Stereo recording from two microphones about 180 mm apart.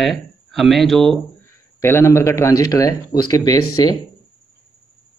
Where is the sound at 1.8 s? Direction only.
15° left (ahead or behind).